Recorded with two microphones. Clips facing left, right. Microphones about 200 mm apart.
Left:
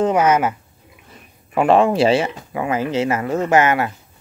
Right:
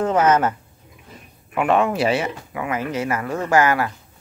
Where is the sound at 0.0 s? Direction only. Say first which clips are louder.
Left 1 dB; 10° left (ahead or behind).